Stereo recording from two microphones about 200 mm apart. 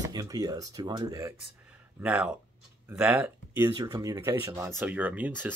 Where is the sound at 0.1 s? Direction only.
20° right (ahead or behind).